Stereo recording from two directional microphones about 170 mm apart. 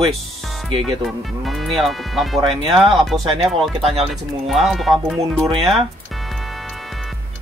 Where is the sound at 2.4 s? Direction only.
30° right (ahead or behind).